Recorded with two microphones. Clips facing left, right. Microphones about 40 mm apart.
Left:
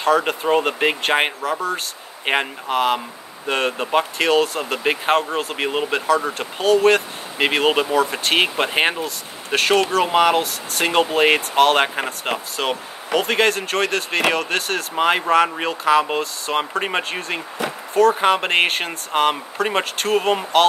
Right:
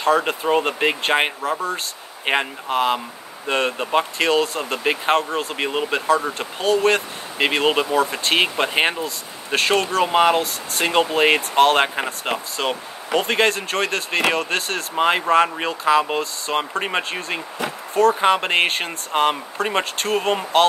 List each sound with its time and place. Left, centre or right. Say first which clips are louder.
0.0 s speech: left 1 dB; centre